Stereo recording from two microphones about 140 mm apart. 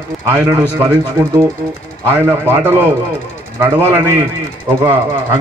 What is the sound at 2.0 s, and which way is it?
A man's voice, 15° right (ahead or behind).